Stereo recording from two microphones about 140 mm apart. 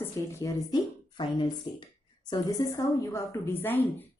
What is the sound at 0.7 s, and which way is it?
A woman's voice, 35° left (ahead or behind).